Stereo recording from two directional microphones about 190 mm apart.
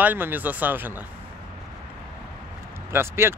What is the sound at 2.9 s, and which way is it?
Speech, 15° right (ahead or behind).